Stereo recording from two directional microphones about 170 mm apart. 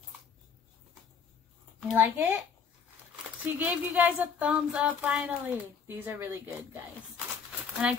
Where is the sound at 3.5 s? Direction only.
10° right (ahead or behind).